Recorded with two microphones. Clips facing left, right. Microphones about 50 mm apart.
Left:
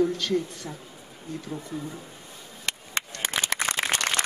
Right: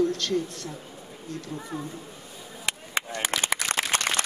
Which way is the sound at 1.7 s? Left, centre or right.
Right.